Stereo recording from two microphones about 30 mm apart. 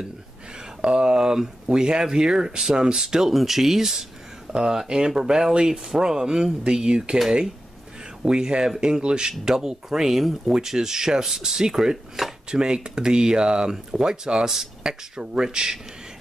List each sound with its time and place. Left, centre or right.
0.8 s speech: right
5.1 s speech: centre
8.3 s speech: right
9.4 s speech: centre